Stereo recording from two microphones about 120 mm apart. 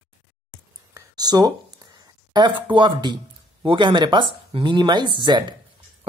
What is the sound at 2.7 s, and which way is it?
Speech, 40° right (ahead or behind).